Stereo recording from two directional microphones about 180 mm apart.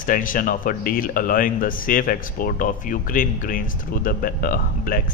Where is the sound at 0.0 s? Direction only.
50° left (ahead or behind).